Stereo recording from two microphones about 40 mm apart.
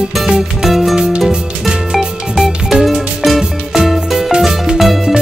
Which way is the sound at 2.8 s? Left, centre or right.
Centre.